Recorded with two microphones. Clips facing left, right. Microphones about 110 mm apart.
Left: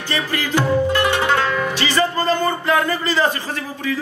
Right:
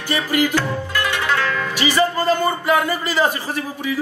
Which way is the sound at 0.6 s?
20° left (ahead or behind).